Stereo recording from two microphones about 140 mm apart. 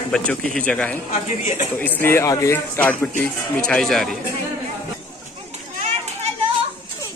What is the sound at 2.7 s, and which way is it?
Speech, 10° left (ahead or behind).